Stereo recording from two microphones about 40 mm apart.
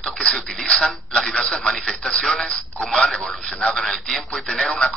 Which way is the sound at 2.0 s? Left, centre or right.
Centre.